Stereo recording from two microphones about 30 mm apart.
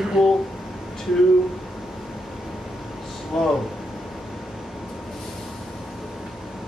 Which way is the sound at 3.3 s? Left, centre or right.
Centre.